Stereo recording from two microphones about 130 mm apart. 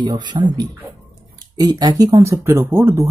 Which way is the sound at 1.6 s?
30° right (ahead or behind).